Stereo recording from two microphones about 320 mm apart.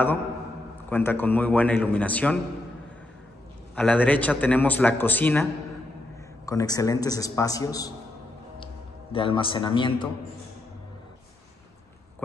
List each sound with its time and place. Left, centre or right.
0.8 s a man's voice: centre
3.7 s a man's voice: centre
9.1 s a man's voice: centre